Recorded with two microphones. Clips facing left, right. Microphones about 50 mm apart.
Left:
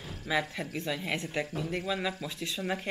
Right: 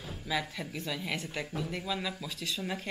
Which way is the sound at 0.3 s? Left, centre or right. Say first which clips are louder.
Left 3 dB; centre.